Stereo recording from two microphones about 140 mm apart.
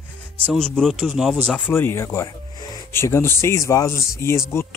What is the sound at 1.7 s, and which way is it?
Speech, 15° left (ahead or behind).